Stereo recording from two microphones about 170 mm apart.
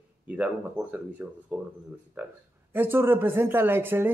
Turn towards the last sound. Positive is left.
turn(degrees=-15)  # may be behind; listen again after turning